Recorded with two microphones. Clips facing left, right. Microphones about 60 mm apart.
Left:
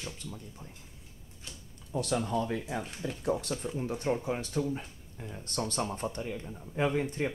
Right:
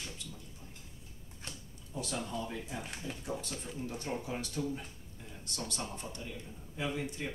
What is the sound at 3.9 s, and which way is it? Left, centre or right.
Speech, left.